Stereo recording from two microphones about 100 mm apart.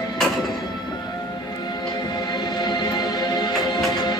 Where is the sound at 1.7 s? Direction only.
45° left (ahead or behind).